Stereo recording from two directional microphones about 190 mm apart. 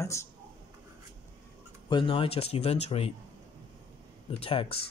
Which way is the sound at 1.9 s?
25° left (ahead or behind).